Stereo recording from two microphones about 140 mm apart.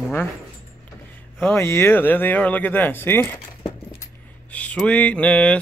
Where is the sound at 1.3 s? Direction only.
15° left (ahead or behind).